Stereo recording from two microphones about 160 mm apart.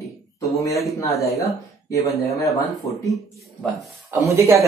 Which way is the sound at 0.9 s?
20° left (ahead or behind).